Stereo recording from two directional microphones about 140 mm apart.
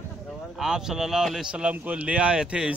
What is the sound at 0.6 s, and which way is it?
Speech, 5° right (ahead or behind).